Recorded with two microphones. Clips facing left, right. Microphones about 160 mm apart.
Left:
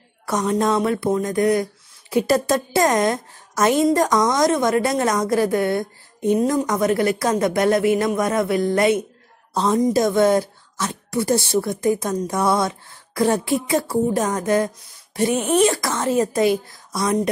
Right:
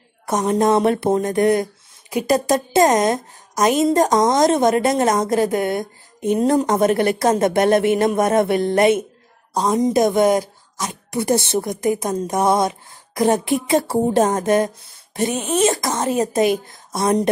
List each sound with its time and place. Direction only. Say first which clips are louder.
0.3 s a woman's voice: right 3 dB; 25° right (ahead or behind)